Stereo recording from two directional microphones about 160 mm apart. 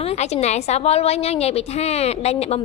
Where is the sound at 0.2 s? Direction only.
45° left (ahead or behind).